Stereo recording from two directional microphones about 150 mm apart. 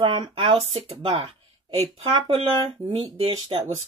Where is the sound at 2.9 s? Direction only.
35° right (ahead or behind).